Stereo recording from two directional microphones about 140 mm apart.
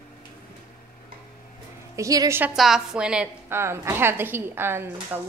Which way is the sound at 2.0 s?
25° right (ahead or behind).